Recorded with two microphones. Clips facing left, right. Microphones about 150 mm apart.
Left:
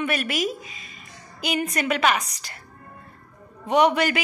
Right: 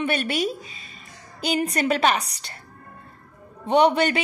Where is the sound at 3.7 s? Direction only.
30° right (ahead or behind).